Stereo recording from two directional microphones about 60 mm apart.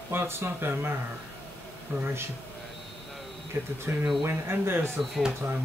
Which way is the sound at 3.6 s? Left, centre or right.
Right.